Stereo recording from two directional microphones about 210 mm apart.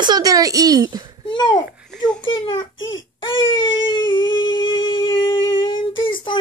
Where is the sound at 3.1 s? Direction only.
25° left (ahead or behind).